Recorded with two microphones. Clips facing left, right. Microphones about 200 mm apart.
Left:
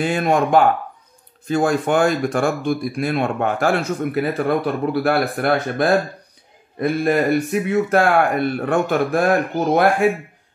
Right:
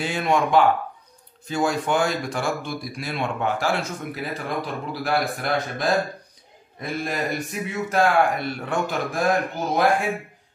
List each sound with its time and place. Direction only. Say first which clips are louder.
0.0 s speech: left 4 dB; 50° left (ahead or behind)